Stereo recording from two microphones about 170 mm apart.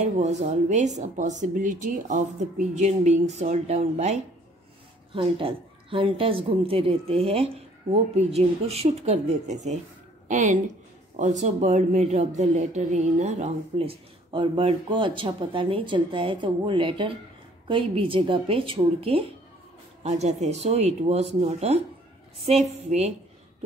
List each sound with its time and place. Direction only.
0.2 s a woman's voice: 45° right (ahead or behind)